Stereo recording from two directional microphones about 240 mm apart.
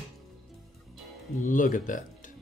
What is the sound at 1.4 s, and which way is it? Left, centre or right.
Speech, left.